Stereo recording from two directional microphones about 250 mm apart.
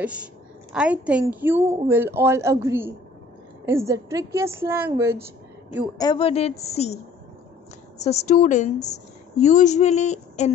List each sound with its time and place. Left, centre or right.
0.0 s a woman's voice: centre
5.9 s a woman's voice: centre
8.0 s a woman's voice: left